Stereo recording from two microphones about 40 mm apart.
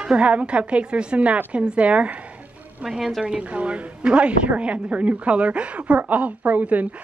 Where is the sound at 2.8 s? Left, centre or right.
Centre.